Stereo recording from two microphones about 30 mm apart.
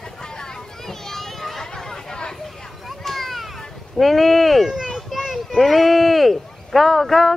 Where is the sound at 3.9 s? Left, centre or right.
Centre.